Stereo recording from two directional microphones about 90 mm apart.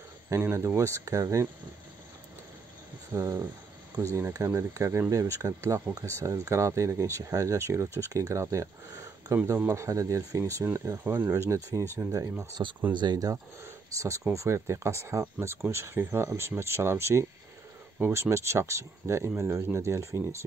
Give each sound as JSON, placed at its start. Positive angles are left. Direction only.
{"t": 0.3, "sound": "speech", "side_deg": -30}
{"t": 3.1, "sound": "speech", "side_deg": -30}
{"t": 12.6, "sound": "speech", "side_deg": -50}
{"t": 13.9, "sound": "speech", "side_deg": -35}